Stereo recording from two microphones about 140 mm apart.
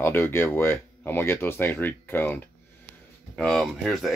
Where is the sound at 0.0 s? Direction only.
15° left (ahead or behind).